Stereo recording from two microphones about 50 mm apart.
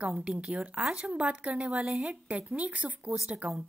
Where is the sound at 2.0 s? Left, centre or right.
Right.